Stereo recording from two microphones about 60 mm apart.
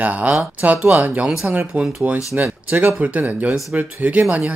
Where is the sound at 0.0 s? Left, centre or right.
Right.